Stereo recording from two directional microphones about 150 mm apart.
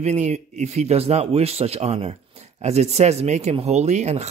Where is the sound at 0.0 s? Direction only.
50° right (ahead or behind).